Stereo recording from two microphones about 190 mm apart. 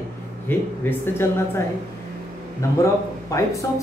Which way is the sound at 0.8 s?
10° left (ahead or behind).